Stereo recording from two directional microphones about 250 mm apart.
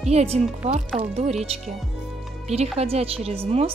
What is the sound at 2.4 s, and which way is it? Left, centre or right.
Speech, right.